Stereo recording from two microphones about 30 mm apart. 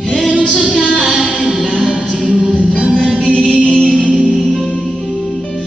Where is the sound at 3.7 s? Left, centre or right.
Left.